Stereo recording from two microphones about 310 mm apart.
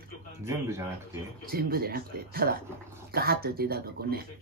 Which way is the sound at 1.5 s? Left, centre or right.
Right.